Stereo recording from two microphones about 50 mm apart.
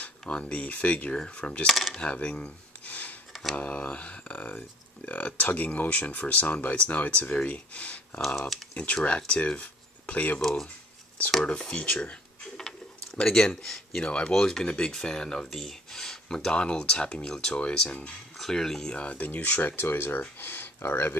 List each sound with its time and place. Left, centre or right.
0.3 s speech: left
1.7 s speech: centre
2.0 s a sound: left
3.5 s speech: left
11.8 s speech: left
13.2 s speech: centre
18.3 s speech: centre
18.9 s speech: left
19.7 s speech: left